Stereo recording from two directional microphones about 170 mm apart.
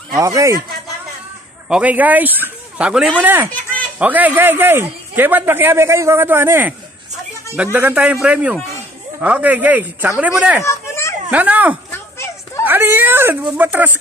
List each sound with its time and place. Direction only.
0.2 s a man's voice: 20° right (ahead or behind)
1.7 s a man's voice: 10° right (ahead or behind)
10.6 s a sound: 15° left (ahead or behind)
11.2 s a man's voice: 10° right (ahead or behind)
11.9 s a sound: 15° left (ahead or behind)
12.6 s speech: 10° right (ahead or behind)